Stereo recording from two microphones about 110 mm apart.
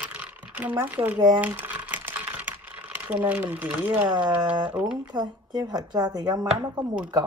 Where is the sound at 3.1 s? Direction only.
15° right (ahead or behind).